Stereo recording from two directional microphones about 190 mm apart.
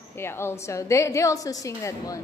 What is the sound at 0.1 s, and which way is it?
A woman's voice, 15° left (ahead or behind).